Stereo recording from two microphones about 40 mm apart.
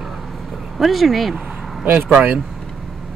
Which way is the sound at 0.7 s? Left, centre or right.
Centre.